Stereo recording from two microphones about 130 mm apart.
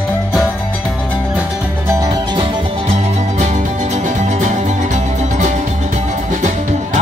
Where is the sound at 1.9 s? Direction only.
30° right (ahead or behind).